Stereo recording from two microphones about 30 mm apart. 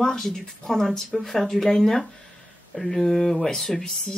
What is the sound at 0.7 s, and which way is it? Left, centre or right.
Speech, centre.